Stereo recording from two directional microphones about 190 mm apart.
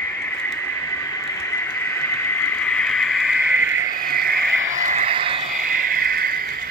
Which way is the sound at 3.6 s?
50° left (ahead or behind).